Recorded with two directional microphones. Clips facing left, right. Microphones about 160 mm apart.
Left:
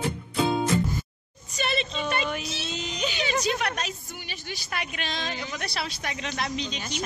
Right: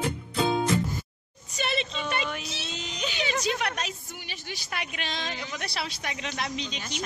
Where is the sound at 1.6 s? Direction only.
15° right (ahead or behind).